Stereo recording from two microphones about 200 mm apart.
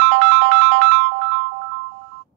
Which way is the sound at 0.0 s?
60° right (ahead or behind).